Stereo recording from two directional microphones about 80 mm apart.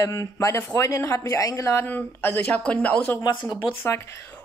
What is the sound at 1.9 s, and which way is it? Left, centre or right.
Speech, left.